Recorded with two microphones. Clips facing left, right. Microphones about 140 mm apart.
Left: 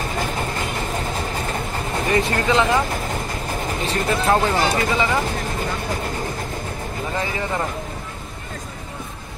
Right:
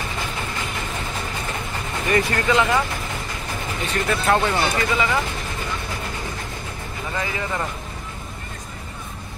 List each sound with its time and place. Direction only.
2.1 s speech: 20° left (ahead or behind)
3.6 s speech: 35° left (ahead or behind)
5.3 s vehicle: 45° left (ahead or behind)
7.2 s speech: 30° left (ahead or behind)